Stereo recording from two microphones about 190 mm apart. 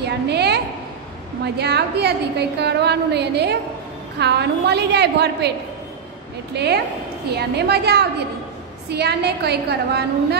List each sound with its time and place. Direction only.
0.0 s a sound: 60° right (ahead or behind)
1.4 s a woman's voice: 60° right (ahead or behind)
6.5 s a woman's voice: 60° right (ahead or behind)